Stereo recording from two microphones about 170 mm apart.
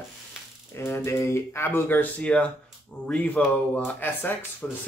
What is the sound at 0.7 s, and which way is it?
Speech, 15° left (ahead or behind).